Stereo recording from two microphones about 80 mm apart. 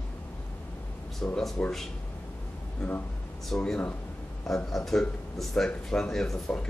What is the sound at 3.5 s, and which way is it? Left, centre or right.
Speech, centre.